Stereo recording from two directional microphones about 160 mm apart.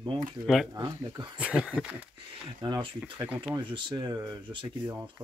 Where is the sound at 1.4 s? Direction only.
5° right (ahead or behind).